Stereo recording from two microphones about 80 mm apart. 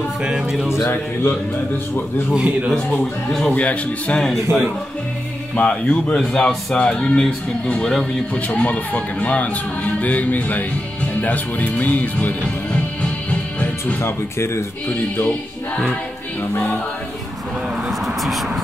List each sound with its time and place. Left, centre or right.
0.2 s speech: centre
0.7 s speech: left
2.3 s speech: centre
2.7 s speech: centre
5.6 s speech: centre
14.0 s speech: left
17.8 s a sound: centre